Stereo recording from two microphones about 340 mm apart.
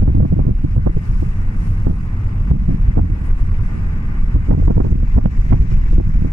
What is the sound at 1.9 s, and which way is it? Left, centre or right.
Heart sounds, right.